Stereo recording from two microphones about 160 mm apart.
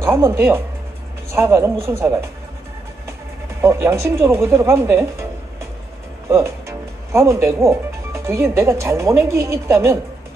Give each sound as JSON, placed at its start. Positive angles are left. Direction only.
{"t": 0.0, "sound": "speech", "side_deg": -15}
{"t": 3.6, "sound": "speech", "side_deg": -15}
{"t": 6.2, "sound": "speech", "side_deg": -15}